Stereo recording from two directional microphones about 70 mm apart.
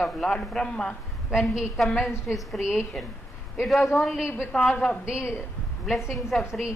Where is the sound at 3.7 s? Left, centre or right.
Centre.